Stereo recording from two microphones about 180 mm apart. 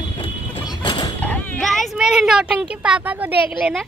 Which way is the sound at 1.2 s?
5° left (ahead or behind).